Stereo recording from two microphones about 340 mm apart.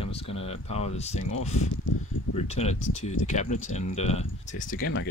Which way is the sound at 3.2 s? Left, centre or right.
Left.